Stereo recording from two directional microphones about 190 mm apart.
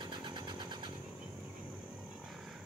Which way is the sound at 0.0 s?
25° right (ahead or behind).